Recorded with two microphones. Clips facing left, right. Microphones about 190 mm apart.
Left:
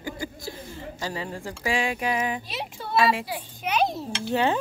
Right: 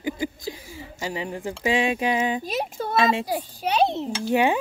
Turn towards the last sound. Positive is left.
turn(degrees=-15)  # may be behind; listen again after turning